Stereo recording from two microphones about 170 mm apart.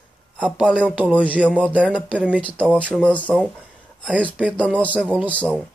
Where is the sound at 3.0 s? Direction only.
5° left (ahead or behind).